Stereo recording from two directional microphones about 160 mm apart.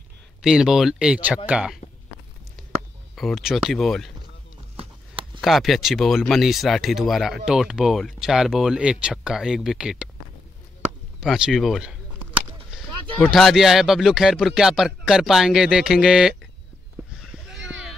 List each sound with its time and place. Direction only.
0.4 s speech: 5° right (ahead or behind)
3.2 s speech: centre (ahead or behind)
4.7 s clip-clop: 35° right (ahead or behind)
5.4 s speech: centre (ahead or behind)
11.1 s speech: 5° right (ahead or behind)